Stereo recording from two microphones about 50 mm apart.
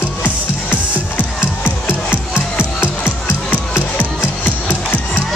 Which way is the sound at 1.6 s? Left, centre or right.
Left.